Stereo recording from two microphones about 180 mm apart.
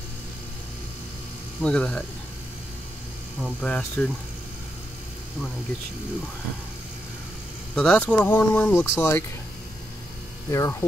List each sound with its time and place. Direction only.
1.6 s speech: 5° left (ahead or behind)
3.4 s speech: 5° left (ahead or behind)
7.7 s speech: 5° left (ahead or behind)
10.5 s speech: 15° left (ahead or behind)